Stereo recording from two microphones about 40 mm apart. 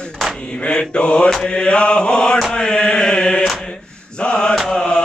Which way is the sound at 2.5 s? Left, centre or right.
Left.